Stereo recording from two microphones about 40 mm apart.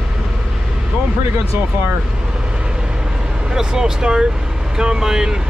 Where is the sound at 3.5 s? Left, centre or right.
Centre.